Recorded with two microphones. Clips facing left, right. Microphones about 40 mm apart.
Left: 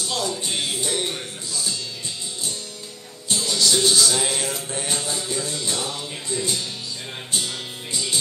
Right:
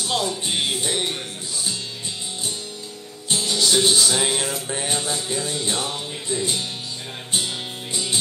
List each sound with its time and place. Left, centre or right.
0.1 s music: right
3.3 s music: right